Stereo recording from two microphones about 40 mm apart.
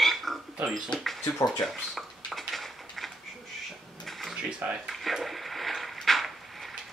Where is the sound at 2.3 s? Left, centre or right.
Centre.